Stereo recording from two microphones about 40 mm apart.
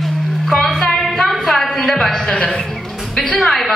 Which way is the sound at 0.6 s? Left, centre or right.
Centre.